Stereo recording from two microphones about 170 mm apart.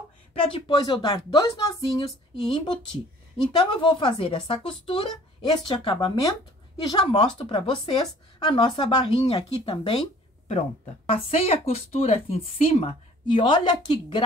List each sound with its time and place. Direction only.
0.3 s a woman's voice: 30° left (ahead or behind)
11.1 s a woman's voice: 35° left (ahead or behind)